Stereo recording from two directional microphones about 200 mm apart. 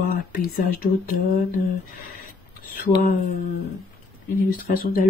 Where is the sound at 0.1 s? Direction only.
45° left (ahead or behind).